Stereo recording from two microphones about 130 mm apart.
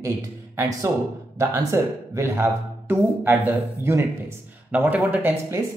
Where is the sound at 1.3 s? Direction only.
25° right (ahead or behind).